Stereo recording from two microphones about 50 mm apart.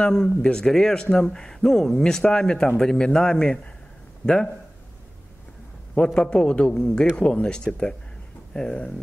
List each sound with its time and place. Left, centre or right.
0.0 s speech: centre
6.0 s speech: centre